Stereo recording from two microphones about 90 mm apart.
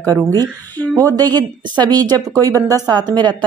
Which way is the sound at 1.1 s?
50° right (ahead or behind).